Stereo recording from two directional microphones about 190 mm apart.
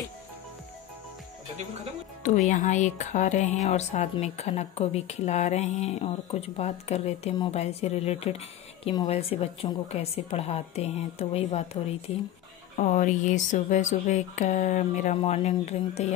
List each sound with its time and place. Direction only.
2.2 s speech: 40° left (ahead or behind)